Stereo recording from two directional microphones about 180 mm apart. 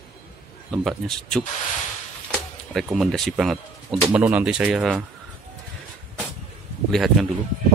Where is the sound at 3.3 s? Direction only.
Centre (ahead or behind).